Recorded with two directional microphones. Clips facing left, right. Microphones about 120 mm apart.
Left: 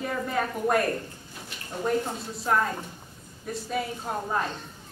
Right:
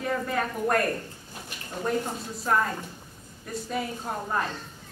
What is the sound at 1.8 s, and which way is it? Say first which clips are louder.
Speech: left 1 dB; centre (ahead or behind).